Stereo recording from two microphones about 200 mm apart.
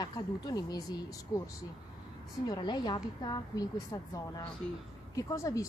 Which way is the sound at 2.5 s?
20° left (ahead or behind).